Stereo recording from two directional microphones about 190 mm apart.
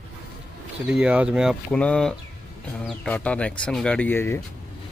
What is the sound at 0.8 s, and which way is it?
Speech, 5° right (ahead or behind).